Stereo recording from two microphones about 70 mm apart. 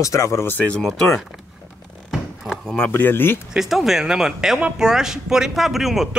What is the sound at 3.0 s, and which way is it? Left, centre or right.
Speech, left.